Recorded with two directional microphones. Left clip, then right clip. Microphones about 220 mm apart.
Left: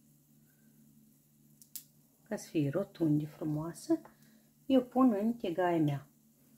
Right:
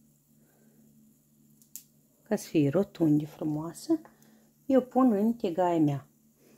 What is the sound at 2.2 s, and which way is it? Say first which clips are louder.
Speech: right 8 dB; 45° right (ahead or behind).